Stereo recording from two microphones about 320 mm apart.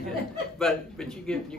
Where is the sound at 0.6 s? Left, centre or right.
Centre.